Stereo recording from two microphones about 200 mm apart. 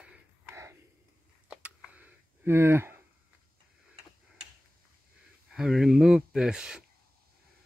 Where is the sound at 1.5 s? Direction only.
5° right (ahead or behind).